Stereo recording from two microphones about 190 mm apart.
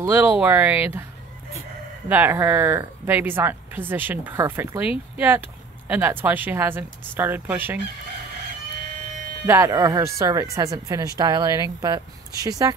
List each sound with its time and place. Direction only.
0.0 s speech: 10° right (ahead or behind)
2.0 s speech: 10° right (ahead or behind)
9.5 s speech: 15° right (ahead or behind)